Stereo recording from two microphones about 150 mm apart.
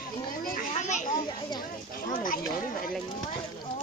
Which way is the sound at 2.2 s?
70° left (ahead or behind).